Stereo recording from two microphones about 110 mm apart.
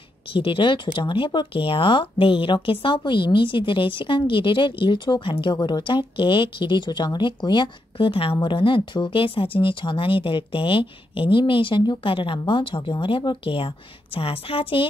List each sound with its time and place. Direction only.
0.3 s speech: 55° left (ahead or behind)